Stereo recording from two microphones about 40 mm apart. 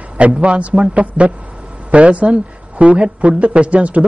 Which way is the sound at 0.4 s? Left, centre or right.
Right.